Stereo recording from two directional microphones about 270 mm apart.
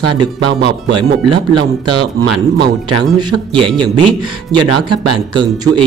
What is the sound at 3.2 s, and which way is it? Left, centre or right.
Speech, centre.